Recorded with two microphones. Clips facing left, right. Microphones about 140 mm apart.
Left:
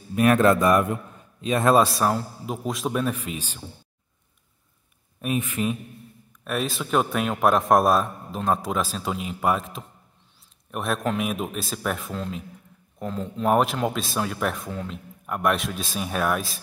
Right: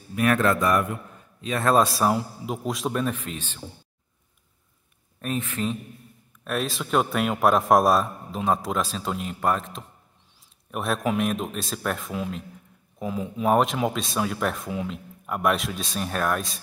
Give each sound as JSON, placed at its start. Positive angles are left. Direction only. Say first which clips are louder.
{"t": 0.1, "sound": "a man's voice", "louder": "left 4 dB", "side_deg": 25}
{"t": 1.8, "sound": "a man's voice", "louder": "even", "side_deg": 0}
{"t": 5.2, "sound": "speech", "louder": "left 2 dB", "side_deg": 10}
{"t": 6.4, "sound": "a man's voice", "louder": "left 1 dB", "side_deg": 0}